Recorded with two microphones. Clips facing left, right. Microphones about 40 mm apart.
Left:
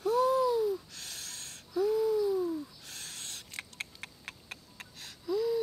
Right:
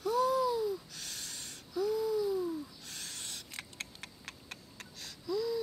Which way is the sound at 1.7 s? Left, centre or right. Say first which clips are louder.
Left 4 dB; centre.